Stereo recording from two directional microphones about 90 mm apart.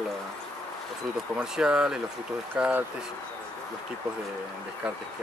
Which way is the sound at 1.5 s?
10° right (ahead or behind).